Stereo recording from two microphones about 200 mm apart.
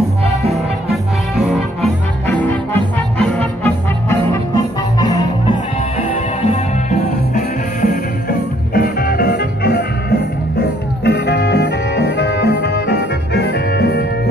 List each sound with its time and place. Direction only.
2.2 s music: 10° left (ahead or behind)
5.9 s music: 35° left (ahead or behind); by 14.0 s 55° left (ahead or behind)